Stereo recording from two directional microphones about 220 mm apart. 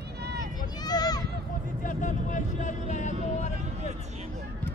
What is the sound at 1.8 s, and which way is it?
Vehicle, 35° left (ahead or behind).